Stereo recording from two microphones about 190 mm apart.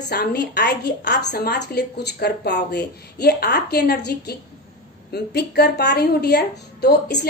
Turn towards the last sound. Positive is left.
turn(degrees=60)  # may be behind; listen again after turning